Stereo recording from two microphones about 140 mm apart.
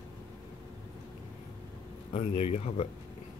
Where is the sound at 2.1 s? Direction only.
50° left (ahead or behind).